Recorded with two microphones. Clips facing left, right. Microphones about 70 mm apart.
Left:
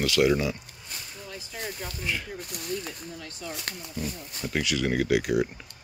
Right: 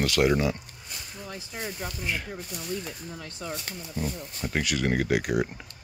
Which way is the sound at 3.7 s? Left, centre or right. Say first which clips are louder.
Left 1 dB; left.